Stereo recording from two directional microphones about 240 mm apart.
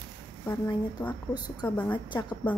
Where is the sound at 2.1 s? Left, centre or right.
Centre.